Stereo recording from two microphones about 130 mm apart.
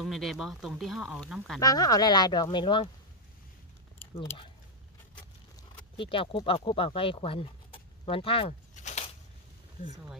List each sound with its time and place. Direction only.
0.0 s speech: centre (ahead or behind)
1.6 s speech: 30° left (ahead or behind)
5.9 s speech: 40° left (ahead or behind)
8.8 s a sound: 60° left (ahead or behind)